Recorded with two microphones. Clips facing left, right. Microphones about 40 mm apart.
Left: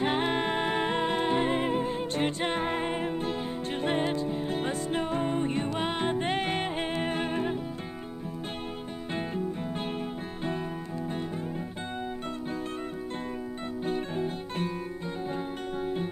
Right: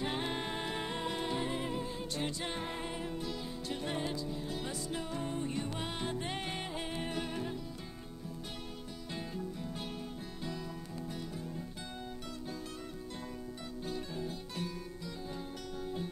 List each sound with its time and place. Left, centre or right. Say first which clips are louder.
0.0 s music: left 9 dB; left
13.8 s guitar: left 9 dB; left